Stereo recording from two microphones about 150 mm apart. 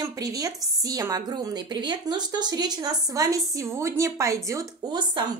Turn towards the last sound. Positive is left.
turn(degrees=-30)  # may be behind; listen again after turning